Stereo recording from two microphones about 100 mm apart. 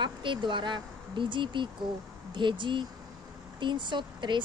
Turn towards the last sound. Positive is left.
turn(degrees=-50)  # may be behind; listen again after turning